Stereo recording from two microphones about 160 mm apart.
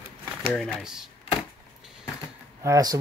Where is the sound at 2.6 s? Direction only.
20° right (ahead or behind).